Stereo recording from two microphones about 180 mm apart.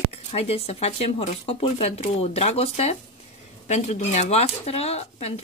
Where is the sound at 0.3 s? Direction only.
35° left (ahead or behind).